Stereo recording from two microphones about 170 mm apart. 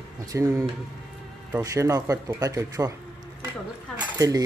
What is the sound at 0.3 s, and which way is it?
Speech, 20° right (ahead or behind).